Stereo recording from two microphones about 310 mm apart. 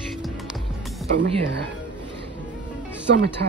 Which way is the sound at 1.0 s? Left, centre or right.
Centre.